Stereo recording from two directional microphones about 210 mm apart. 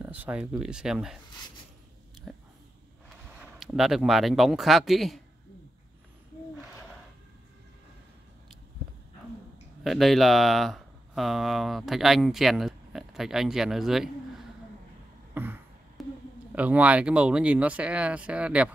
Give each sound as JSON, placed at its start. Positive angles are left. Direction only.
{"t": 0.0, "sound": "speech", "side_deg": -5}
{"t": 2.3, "sound": "a sound", "side_deg": -5}
{"t": 3.5, "sound": "speech", "side_deg": 0}
{"t": 9.8, "sound": "speech", "side_deg": 0}
{"t": 15.3, "sound": "a sound", "side_deg": -10}
{"t": 16.5, "sound": "speech", "side_deg": -5}